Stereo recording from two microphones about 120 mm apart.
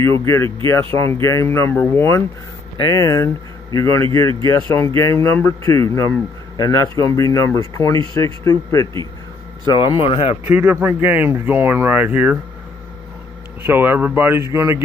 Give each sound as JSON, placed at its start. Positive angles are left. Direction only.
{"t": 0.2, "sound": "speech", "side_deg": 25}
{"t": 9.8, "sound": "speech", "side_deg": 45}
{"t": 10.4, "sound": "speech", "side_deg": -20}
{"t": 13.7, "sound": "speech", "side_deg": -15}